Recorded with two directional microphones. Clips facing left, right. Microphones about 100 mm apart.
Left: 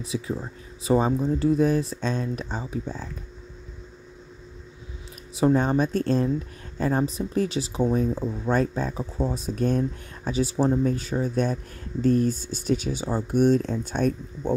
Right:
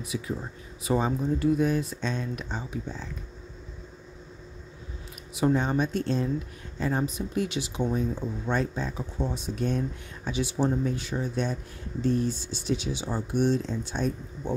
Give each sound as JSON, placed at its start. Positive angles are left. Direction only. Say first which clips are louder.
{"t": 0.1, "sound": "speech", "louder": "left 3 dB", "side_deg": 35}
{"t": 5.3, "sound": "speech", "louder": "left 4 dB", "side_deg": 35}